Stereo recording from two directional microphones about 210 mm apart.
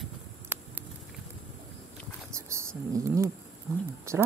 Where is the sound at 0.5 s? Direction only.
10° right (ahead or behind).